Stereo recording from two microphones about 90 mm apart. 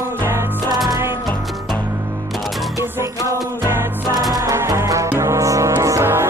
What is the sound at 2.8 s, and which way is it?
Music, 30° right (ahead or behind).